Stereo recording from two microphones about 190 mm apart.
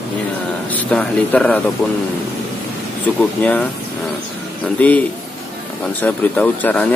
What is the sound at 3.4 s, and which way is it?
Speech, 10° left (ahead or behind).